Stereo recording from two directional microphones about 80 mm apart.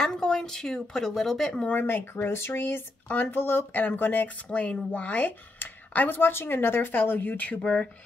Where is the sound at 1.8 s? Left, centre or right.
Left.